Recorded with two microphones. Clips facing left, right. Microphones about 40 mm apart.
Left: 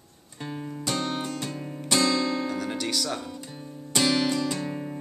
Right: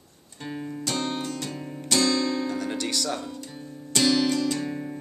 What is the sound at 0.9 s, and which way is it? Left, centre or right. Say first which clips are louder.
Music: even; centre.